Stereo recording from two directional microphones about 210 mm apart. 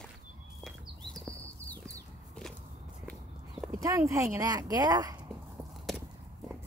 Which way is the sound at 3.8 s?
15° right (ahead or behind).